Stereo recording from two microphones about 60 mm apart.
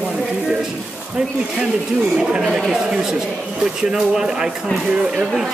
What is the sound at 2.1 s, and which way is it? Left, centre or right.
Speech, centre.